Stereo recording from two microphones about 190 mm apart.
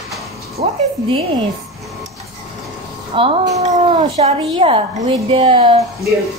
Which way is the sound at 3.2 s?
30° right (ahead or behind).